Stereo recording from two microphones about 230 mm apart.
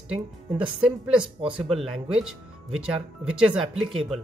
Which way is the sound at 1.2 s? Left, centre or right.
Right.